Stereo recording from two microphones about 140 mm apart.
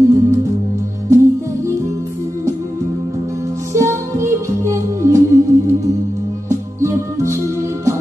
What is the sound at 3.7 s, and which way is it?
Music, 20° right (ahead or behind).